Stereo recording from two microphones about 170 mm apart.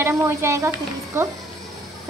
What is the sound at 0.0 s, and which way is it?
A woman's voice, 15° right (ahead or behind).